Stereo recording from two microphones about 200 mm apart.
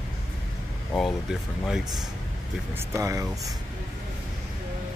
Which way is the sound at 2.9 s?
15° right (ahead or behind).